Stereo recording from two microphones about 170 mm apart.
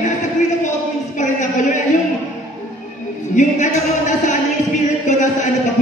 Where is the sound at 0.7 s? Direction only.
45° left (ahead or behind).